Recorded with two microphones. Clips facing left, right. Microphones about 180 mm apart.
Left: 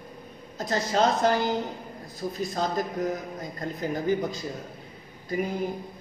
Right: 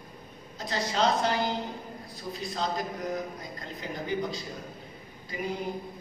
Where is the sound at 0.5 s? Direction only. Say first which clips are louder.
Left 4 dB; 45° left (ahead or behind).